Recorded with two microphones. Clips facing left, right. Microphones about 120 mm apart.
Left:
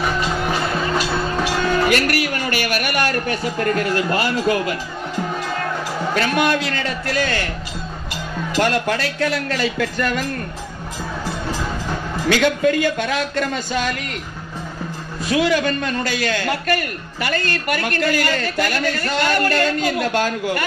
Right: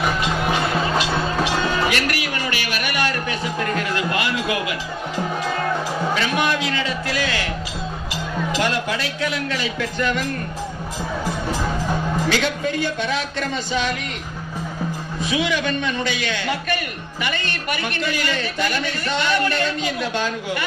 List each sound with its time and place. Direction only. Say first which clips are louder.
0.0 s music: even; 5° right (ahead or behind)
1.9 s a sound: left 4 dB; 45° left (ahead or behind)
6.1 s a man's voice: left 5 dB; 55° left (ahead or behind)
8.5 s a man's voice: left 6 dB; 55° left (ahead or behind)
12.3 s a man's voice: left 9 dB; 55° left (ahead or behind)
15.2 s a man's voice: left 4 dB; 45° left (ahead or behind)